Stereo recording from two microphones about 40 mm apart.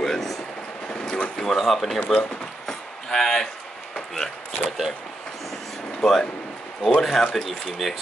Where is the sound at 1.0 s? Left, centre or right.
Left.